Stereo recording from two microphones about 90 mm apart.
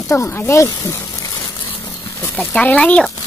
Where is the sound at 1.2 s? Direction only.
40° left (ahead or behind).